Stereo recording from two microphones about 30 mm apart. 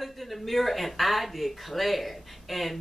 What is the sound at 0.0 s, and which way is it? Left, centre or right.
Speech, centre.